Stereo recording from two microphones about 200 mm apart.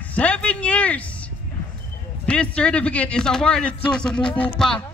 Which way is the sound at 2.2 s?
5° left (ahead or behind).